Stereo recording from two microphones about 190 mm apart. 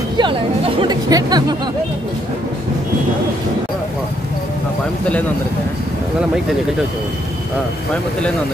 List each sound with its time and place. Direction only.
0.2 s speech: 25° right (ahead or behind)